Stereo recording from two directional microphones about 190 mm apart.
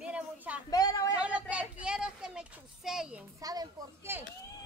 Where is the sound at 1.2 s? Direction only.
5° right (ahead or behind).